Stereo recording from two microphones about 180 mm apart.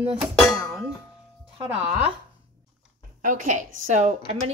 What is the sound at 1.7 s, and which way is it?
Speech, 10° right (ahead or behind).